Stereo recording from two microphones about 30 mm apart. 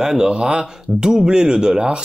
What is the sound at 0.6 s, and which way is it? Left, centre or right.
Speech, centre.